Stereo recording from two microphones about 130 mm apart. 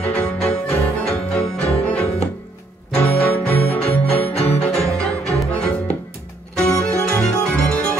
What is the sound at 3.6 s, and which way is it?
Music, 50° left (ahead or behind).